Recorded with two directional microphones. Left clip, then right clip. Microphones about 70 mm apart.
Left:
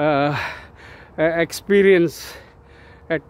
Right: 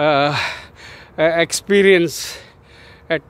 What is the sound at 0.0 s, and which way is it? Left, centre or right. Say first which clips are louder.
Speech: right 3 dB; left.